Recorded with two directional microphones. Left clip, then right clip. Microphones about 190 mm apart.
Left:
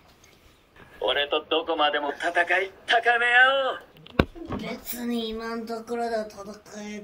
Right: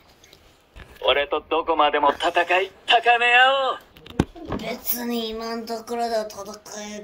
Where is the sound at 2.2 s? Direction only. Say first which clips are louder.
Right 3 dB; 15° right (ahead or behind).